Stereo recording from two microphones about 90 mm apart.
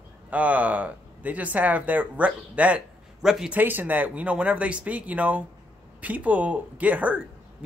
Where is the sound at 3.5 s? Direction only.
20° right (ahead or behind).